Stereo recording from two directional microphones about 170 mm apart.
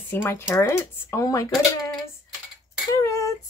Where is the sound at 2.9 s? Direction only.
20° left (ahead or behind).